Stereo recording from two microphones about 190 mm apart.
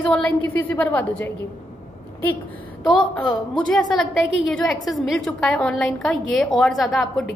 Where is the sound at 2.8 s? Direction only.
5° left (ahead or behind).